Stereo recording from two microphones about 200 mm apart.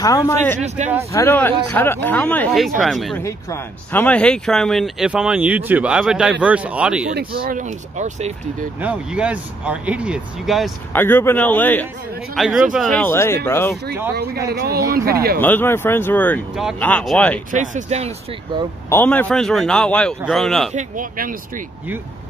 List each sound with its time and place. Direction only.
0.0 s speech: 15° left (ahead or behind)
0.6 s speech: 35° right (ahead or behind)
1.1 s speech: 10° left (ahead or behind)
3.2 s speech: 15° left (ahead or behind); by 7.1 s 5° right (ahead or behind)
7.4 s speech: 40° right (ahead or behind)
8.8 s speech: 5° right (ahead or behind)
10.9 s speech: 10° left (ahead or behind)
12.4 s speech: centre (ahead or behind)
13.1 s speech: 10° left (ahead or behind)
14.1 s speech: 55° right (ahead or behind)
15.4 s speech: 10° left (ahead or behind)
17.5 s speech: 40° right (ahead or behind)
18.9 s speech: 10° left (ahead or behind)
20.7 s speech: 40° right (ahead or behind)